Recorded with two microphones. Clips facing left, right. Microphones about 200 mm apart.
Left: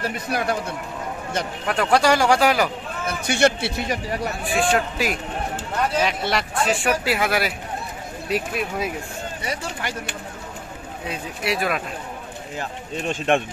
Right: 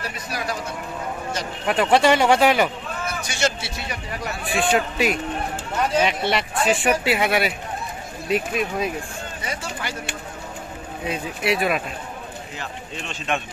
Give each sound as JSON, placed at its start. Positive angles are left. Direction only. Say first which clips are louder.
{"t": 0.0, "sound": "speech", "louder": "left 5 dB", "side_deg": 55}
{"t": 1.7, "sound": "speech", "louder": "right 2 dB", "side_deg": 0}
{"t": 3.1, "sound": "speech", "louder": "left 6 dB", "side_deg": 60}
{"t": 4.4, "sound": "speech", "louder": "right 1 dB", "side_deg": 0}
{"t": 11.1, "sound": "speech", "louder": "right 3 dB", "side_deg": 0}
{"t": 12.5, "sound": "speech", "louder": "left 7 dB", "side_deg": 50}